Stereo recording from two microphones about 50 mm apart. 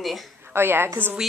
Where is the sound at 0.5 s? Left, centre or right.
Right.